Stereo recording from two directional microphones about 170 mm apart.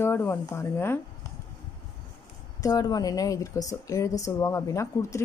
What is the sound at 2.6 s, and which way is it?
A woman's voice, 20° left (ahead or behind).